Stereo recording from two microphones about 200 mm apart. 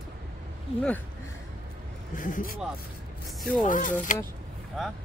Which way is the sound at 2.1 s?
40° left (ahead or behind).